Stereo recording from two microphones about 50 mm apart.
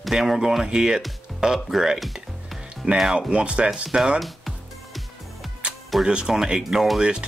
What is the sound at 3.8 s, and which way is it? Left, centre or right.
Speech, centre.